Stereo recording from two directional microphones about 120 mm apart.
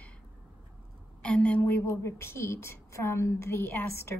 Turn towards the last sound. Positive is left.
turn(degrees=20)  # may be behind; listen again after turning